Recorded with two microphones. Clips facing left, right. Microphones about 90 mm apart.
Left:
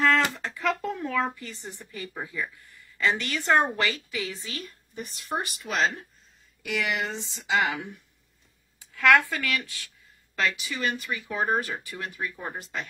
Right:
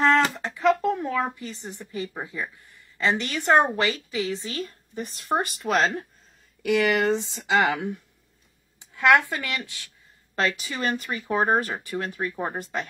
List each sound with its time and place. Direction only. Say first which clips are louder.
0.0 s a sound: right 3 dB; 20° right (ahead or behind)
0.9 s speech: right 2 dB; 20° right (ahead or behind); by 5.2 s 35° right (ahead or behind)
5.3 s speech: right 7 dB; 50° right (ahead or behind)
8.7 s a woman's voice: right 1 dB; 20° right (ahead or behind)
10.3 s speech: right 2 dB; 40° right (ahead or behind)